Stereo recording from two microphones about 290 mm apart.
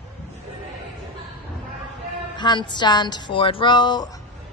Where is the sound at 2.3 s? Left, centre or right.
Centre.